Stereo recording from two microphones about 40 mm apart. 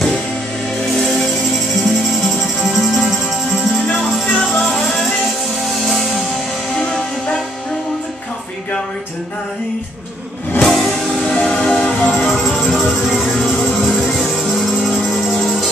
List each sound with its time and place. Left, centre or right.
1.1 s music: centre
4.6 s music: centre
6.8 s music: centre
10.6 s music: centre
12.5 s music: centre